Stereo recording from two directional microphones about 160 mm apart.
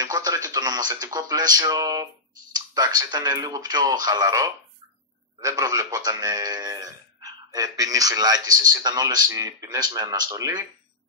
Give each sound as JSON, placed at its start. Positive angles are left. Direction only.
{"t": 0.0, "sound": "a man's voice", "side_deg": -20}